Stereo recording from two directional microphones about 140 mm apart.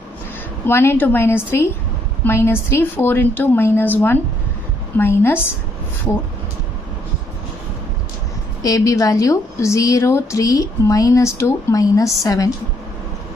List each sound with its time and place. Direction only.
0.7 s a woman's voice: 15° left (ahead or behind)
8.6 s a woman's voice: 25° left (ahead or behind)